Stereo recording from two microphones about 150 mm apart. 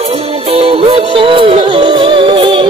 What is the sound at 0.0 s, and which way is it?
Music, 40° right (ahead or behind).